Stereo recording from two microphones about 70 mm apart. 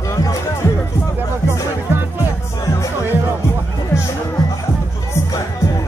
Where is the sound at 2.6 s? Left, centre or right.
Left.